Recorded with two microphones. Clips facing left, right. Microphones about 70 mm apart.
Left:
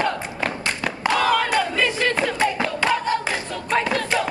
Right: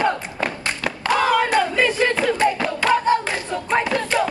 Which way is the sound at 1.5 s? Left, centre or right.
Centre.